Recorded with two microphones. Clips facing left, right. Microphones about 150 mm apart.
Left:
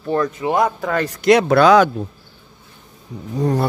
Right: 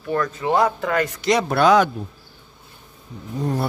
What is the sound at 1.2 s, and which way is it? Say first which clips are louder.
Speech: left 6 dB; 75° left (ahead or behind).